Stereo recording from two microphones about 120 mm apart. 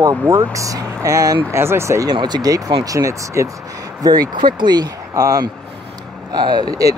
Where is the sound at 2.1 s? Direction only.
35° right (ahead or behind).